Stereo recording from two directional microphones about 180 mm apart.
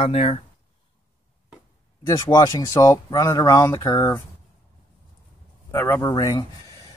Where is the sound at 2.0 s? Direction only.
20° left (ahead or behind).